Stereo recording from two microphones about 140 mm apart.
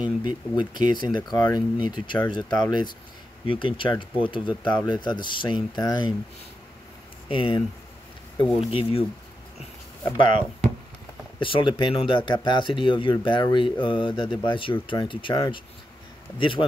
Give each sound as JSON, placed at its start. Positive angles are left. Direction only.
{"t": 0.2, "sound": "speech", "side_deg": 35}
{"t": 7.2, "sound": "speech", "side_deg": 40}
{"t": 10.1, "sound": "speech", "side_deg": 35}